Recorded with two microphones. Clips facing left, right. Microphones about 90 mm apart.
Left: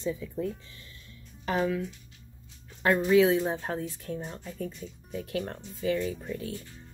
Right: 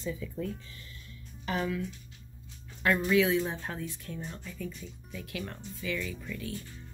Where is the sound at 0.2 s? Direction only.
25° left (ahead or behind).